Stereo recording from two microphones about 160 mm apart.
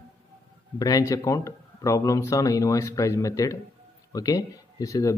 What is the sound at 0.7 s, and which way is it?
A man's voice, 20° left (ahead or behind).